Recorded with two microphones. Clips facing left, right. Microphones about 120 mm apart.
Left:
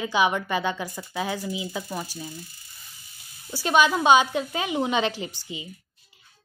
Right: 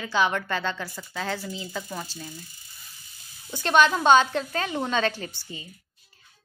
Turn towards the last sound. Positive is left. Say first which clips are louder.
# left 3 dB
turn(degrees=15)  # may be behind; listen again after turning